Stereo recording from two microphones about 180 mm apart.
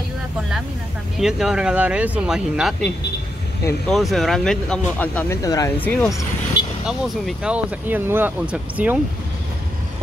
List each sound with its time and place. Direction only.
1.1 s speech: 5° right (ahead or behind)
3.9 s speech: centre (ahead or behind); by 5.9 s 20° left (ahead or behind)
5.9 s speech: 10° left (ahead or behind)
6.9 s speech: 5° right (ahead or behind)